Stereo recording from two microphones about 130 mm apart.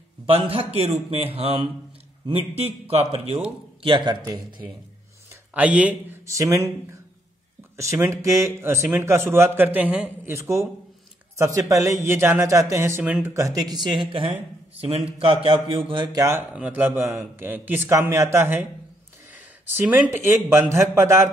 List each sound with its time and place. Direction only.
0.3 s a man's voice: 50° right (ahead or behind)
3.8 s speech: 35° right (ahead or behind)
5.3 s speech: 10° right (ahead or behind)
6.2 s speech: 25° right (ahead or behind)
7.7 s a man's voice: 25° right (ahead or behind)
13.0 s a man's voice: 10° right (ahead or behind)
13.3 s a man's voice: 25° right (ahead or behind)
16.5 s a man's voice: 10° right (ahead or behind)